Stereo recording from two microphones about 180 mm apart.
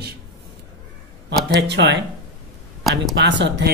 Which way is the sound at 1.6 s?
75° right (ahead or behind).